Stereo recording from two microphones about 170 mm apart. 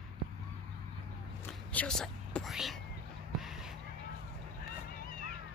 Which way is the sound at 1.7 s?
5° left (ahead or behind).